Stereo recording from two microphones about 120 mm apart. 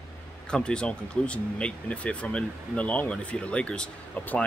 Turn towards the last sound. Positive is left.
turn(degrees=15)  # may be behind; listen again after turning